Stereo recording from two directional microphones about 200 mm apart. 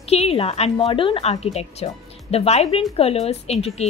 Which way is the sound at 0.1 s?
30° left (ahead or behind).